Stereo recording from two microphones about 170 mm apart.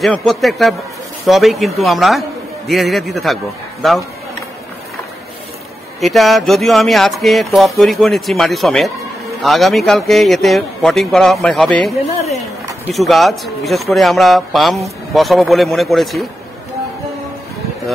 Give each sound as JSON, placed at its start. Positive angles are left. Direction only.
{"t": 0.0, "sound": "speech", "side_deg": 5}
{"t": 5.9, "sound": "speech", "side_deg": 0}
{"t": 12.1, "sound": "speech", "side_deg": 40}
{"t": 12.9, "sound": "speech", "side_deg": 0}